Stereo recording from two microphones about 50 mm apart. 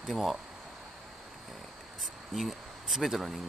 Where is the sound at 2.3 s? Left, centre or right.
Centre.